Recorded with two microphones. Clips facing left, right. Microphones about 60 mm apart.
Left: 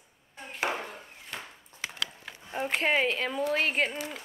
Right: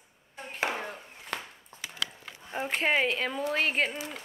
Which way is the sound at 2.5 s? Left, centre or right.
Centre.